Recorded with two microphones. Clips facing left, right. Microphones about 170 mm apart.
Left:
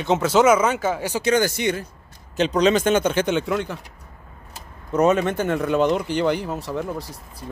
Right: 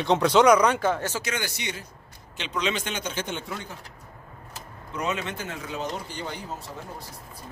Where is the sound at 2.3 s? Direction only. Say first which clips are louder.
Left 11 dB; 40° left (ahead or behind); by 3.8 s 85° left.